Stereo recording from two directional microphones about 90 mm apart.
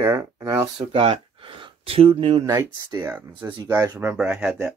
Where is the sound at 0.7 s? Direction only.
80° right.